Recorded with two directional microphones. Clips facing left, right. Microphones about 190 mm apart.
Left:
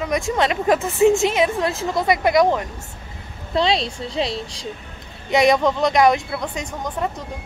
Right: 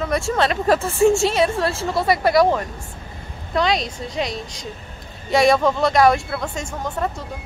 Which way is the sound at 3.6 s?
30° left (ahead or behind).